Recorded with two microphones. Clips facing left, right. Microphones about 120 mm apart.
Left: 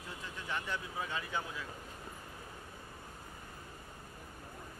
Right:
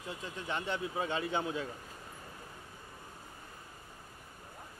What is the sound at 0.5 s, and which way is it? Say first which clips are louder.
Speech: right 4 dB; 25° right (ahead or behind).